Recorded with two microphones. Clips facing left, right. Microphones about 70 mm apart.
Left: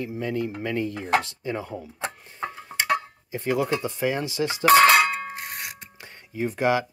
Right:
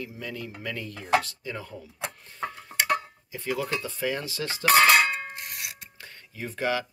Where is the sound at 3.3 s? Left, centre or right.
Left.